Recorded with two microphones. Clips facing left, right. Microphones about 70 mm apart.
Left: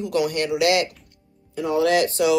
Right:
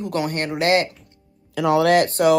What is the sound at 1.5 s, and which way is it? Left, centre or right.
Speech, right.